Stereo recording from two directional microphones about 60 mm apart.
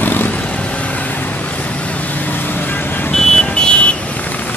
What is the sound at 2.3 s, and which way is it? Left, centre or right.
Vehicle, left.